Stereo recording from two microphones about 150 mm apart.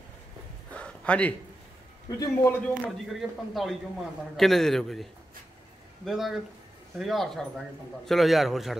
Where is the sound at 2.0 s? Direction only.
25° left (ahead or behind).